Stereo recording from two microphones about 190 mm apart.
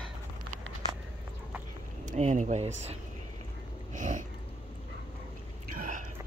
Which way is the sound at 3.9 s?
40° right (ahead or behind).